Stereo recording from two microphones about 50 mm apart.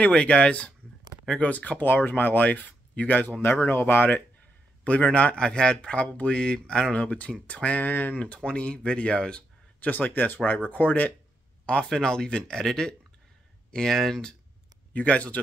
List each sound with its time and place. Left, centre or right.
0.0 s a man's voice: left
4.8 s a man's voice: left
7.0 s a man's voice: left
7.8 s speech: left
8.4 s a man's voice: left
9.8 s speech: left; by 14.3 s centre
15.0 s a man's voice: left